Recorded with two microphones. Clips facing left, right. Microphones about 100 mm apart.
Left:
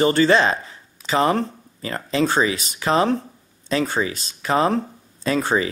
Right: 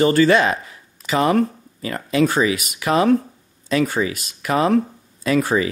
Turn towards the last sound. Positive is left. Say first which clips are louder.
# right 2 dB
turn(degrees=30)  # may be behind; listen again after turning